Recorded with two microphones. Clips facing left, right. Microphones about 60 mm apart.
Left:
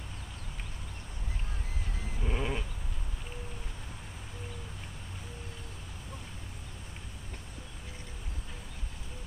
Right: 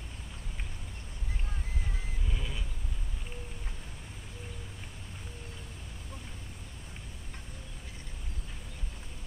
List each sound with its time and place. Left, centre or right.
2.2 s sheep: left